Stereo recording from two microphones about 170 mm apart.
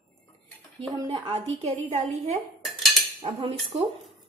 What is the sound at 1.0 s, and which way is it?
Speech, 30° right (ahead or behind).